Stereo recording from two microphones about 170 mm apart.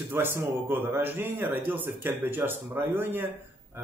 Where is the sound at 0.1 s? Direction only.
15° right (ahead or behind).